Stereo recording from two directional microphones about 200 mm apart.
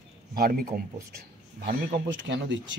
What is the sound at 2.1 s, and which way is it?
Speech, 65° right (ahead or behind).